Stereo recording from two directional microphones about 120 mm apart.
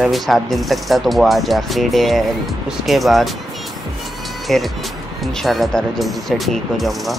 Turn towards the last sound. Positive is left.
turn(degrees=0)  # may be behind; listen again after turning